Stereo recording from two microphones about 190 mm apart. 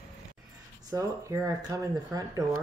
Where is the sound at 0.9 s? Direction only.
15° right (ahead or behind).